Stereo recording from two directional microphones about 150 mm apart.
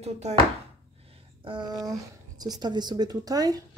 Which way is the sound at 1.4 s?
30° right (ahead or behind).